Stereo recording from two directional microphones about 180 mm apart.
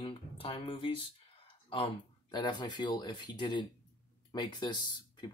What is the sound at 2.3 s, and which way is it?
Speech, 25° left (ahead or behind).